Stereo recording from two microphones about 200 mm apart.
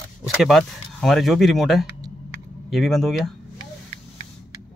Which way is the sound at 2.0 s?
20° right (ahead or behind).